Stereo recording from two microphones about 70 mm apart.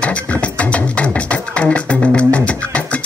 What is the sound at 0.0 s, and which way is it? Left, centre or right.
Music, centre.